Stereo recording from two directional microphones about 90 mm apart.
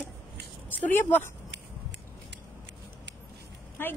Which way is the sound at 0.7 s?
20° left (ahead or behind).